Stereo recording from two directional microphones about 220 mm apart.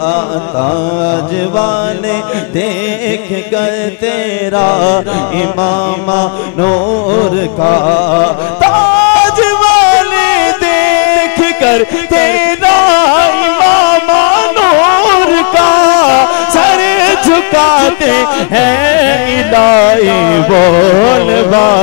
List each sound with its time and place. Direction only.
4.6 s mantra: 25° left (ahead or behind)
6.1 s mantra: 30° left (ahead or behind)
8.5 s music: 15° left (ahead or behind)